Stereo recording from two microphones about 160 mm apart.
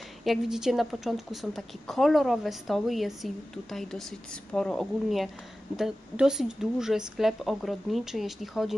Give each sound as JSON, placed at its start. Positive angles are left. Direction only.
{"t": 0.2, "sound": "a woman's voice", "side_deg": 0}